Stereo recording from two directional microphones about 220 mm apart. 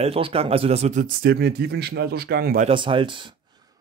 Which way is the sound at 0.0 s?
25° right (ahead or behind).